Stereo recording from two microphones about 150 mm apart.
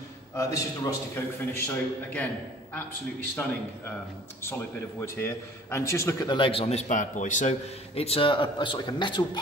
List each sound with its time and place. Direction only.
0.3 s a man's voice: 20° left (ahead or behind)
5.0 s a man's voice: 20° left (ahead or behind); by 7.5 s 55° left (ahead or behind)
7.9 s a man's voice: 40° left (ahead or behind)